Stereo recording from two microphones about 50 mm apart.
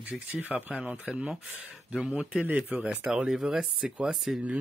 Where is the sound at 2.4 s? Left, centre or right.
Right.